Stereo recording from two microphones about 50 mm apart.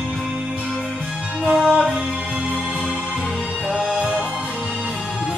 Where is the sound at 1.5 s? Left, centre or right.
Centre.